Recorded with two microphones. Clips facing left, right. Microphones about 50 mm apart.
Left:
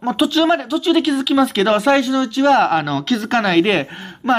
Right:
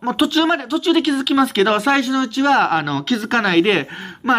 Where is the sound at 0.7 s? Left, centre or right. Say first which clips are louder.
Even; right.